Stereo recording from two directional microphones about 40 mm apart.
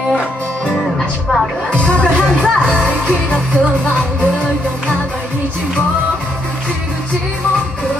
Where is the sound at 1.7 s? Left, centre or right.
Left.